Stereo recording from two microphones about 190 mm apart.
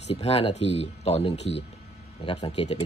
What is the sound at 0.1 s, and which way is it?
Speech, 30° left (ahead or behind).